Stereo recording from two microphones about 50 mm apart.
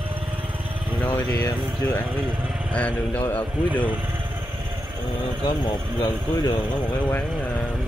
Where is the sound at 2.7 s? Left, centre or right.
Left.